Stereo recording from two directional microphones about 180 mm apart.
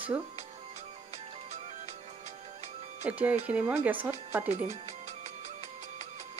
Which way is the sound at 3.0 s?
10° right (ahead or behind).